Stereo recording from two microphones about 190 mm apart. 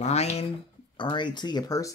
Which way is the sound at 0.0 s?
35° left (ahead or behind).